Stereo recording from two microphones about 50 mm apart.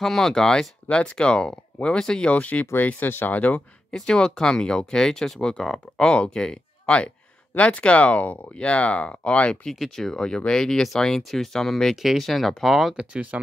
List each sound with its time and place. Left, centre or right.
0.0 s speech: centre
2.3 s speech: left
3.3 s speech: left
3.9 s speech: centre
9.8 s speech: centre
13.0 s speech: right